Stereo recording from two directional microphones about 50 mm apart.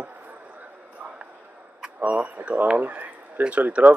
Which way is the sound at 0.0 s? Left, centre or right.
Right.